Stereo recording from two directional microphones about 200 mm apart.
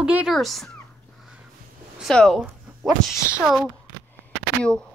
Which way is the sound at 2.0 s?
5° left (ahead or behind).